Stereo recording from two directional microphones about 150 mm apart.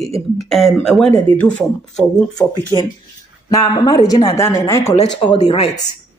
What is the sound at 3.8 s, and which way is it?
A woman's voice, 25° left (ahead or behind).